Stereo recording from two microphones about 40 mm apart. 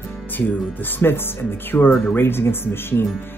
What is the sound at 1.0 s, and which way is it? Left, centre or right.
Speech, left.